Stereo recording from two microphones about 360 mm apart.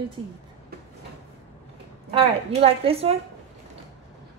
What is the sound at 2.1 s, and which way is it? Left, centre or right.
A woman's voice, centre.